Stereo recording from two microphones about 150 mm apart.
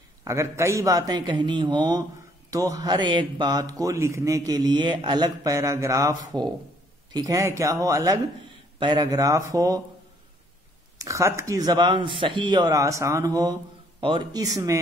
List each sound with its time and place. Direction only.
0.2 s speech: 20° right (ahead or behind)
11.0 s speech: 20° right (ahead or behind)